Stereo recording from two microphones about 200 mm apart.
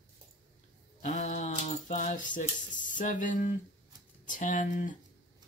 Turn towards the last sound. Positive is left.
turn(degrees=40)  # may be behind; listen again after turning